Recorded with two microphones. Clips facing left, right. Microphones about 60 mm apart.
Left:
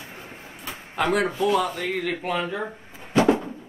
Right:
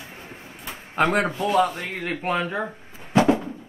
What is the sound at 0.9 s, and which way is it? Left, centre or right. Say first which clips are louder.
Speech: right 1 dB; right.